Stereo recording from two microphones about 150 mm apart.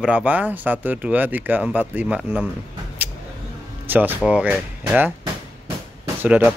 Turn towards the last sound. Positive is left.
turn(degrees=-15)  # may be behind; listen again after turning